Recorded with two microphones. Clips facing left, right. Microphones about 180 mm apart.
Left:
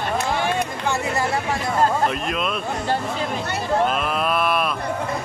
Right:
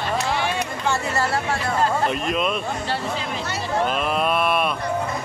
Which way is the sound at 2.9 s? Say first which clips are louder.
Left 5 dB; 50° left (ahead or behind).